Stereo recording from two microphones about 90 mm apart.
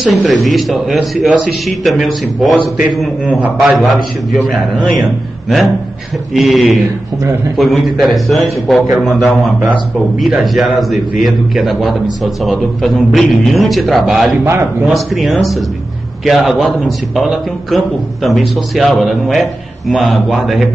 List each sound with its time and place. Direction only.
0.0 s a man's voice: centre (ahead or behind)
6.3 s a man's voice: centre (ahead or behind)
10.4 s a man's voice: centre (ahead or behind)
14.4 s a man's voice: 25° right (ahead or behind)
14.9 s a man's voice: centre (ahead or behind)